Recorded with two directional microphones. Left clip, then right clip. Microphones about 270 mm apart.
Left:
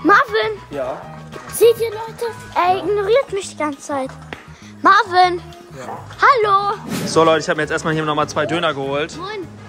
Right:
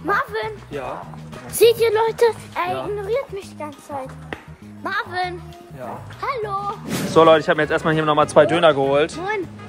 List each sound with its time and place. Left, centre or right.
0.0 s a sound: left
1.6 s speech: centre
2.0 s speech: centre
2.5 s a child's voice: left
7.1 s speech: centre